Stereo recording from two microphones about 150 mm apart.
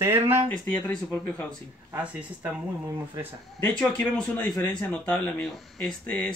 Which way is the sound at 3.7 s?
5° left (ahead or behind).